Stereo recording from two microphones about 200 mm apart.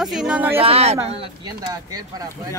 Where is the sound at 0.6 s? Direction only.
30° right (ahead or behind).